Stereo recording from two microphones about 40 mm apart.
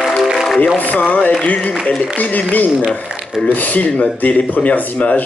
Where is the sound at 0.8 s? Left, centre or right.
Left.